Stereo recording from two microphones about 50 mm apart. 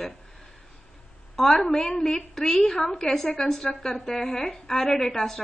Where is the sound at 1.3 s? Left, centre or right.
Centre.